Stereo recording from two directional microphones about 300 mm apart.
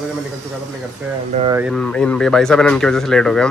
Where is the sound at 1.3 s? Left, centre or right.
Centre.